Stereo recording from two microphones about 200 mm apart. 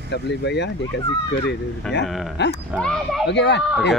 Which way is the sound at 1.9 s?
60° left (ahead or behind).